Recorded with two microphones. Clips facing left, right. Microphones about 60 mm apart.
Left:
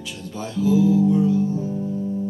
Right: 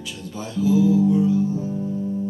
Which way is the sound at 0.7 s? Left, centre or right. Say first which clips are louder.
Even; centre.